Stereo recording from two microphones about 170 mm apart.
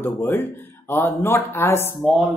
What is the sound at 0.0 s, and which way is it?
Speech, 10° left (ahead or behind).